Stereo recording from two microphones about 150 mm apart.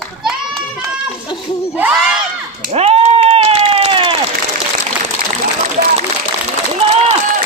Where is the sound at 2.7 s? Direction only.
40° right (ahead or behind).